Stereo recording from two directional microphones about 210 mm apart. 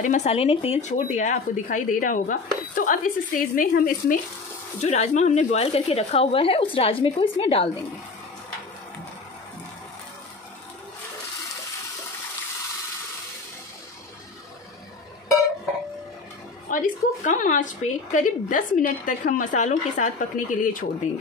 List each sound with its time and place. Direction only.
0.0 s speech: 35° left (ahead or behind)
16.7 s speech: 40° left (ahead or behind)